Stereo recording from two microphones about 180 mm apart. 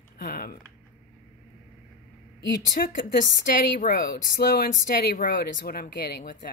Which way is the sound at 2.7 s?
50° left (ahead or behind).